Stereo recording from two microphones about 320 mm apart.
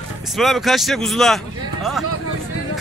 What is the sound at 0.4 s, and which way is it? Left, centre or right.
Speech, centre.